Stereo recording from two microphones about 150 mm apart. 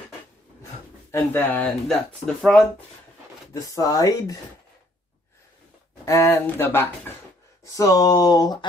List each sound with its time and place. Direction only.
1.1 s speech: 15° left (ahead or behind)
3.5 s speech: 25° left (ahead or behind)
6.0 s speech: 20° left (ahead or behind)